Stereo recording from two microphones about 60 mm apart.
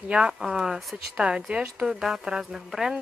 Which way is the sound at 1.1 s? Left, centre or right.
Centre.